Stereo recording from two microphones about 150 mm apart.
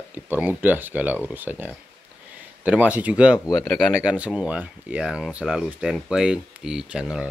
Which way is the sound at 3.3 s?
25° left (ahead or behind).